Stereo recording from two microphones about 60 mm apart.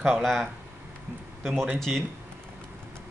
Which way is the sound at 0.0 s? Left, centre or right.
Centre.